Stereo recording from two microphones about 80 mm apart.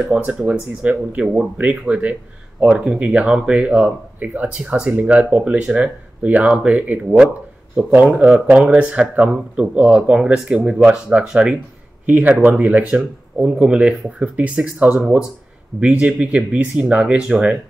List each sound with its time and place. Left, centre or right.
0.1 s speech: centre